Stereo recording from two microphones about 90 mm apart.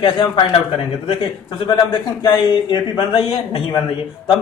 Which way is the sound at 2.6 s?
70° left (ahead or behind).